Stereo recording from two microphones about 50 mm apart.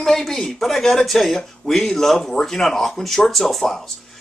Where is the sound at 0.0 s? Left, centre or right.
Centre.